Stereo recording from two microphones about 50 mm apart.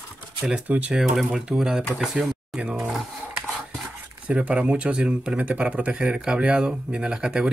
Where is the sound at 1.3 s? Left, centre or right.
Centre.